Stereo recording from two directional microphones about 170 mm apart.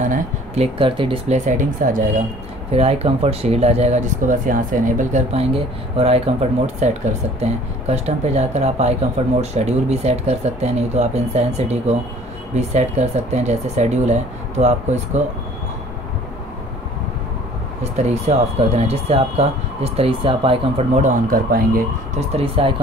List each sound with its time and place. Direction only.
0.0 s a sound: 45° right (ahead or behind)
0.7 s speech: 30° right (ahead or behind); by 2.2 s 50° right (ahead or behind)
2.7 s speech: 40° right (ahead or behind)
17.9 s speech: 40° right (ahead or behind)
21.3 s speech: 60° right (ahead or behind)
22.3 s speech: 35° right (ahead or behind)